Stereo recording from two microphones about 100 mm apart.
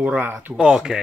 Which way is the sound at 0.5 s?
5° right (ahead or behind).